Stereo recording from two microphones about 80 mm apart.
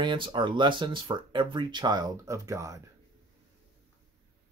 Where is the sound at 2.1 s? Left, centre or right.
Right.